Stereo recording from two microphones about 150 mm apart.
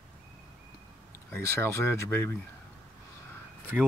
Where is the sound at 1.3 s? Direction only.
15° left (ahead or behind).